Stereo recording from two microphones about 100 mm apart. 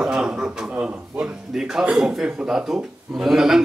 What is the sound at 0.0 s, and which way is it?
A man's voice, 10° right (ahead or behind).